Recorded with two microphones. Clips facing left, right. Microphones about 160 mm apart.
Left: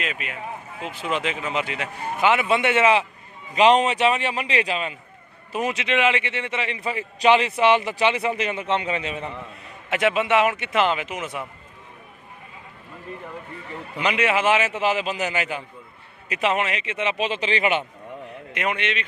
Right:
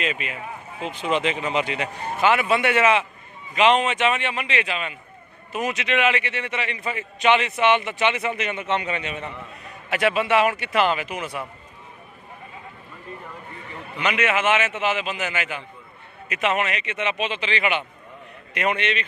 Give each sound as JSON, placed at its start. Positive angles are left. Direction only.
{"t": 0.0, "sound": "speech", "side_deg": 0}
{"t": 2.1, "sound": "a man's voice", "side_deg": 20}
{"t": 14.0, "sound": "a man's voice", "side_deg": 30}
{"t": 18.6, "sound": "speech", "side_deg": 10}